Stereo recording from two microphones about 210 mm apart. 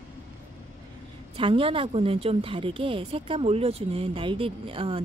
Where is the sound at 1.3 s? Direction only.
25° right (ahead or behind).